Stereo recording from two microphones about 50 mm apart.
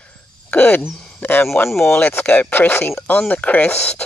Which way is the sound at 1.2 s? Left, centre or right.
Left.